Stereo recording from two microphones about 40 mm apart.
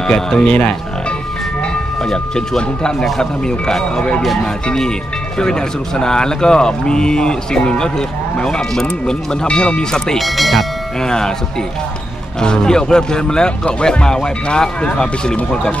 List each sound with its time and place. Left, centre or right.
0.4 s speech: left
2.3 s speech: centre
5.4 s speech: centre
10.1 s speech: centre
11.0 s speech: centre
12.4 s speech: centre